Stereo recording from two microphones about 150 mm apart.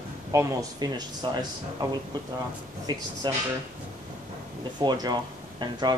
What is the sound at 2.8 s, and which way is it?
Speech, 30° right (ahead or behind).